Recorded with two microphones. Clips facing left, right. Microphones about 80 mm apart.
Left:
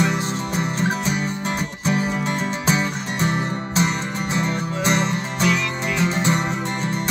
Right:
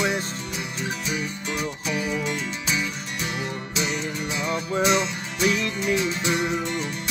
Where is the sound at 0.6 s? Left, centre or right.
Left.